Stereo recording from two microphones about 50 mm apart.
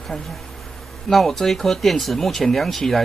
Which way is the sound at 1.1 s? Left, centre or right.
Centre.